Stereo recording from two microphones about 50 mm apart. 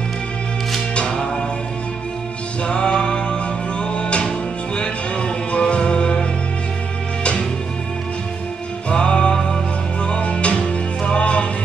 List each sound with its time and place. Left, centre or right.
0.9 s music: left
2.6 s music: centre
8.8 s music: left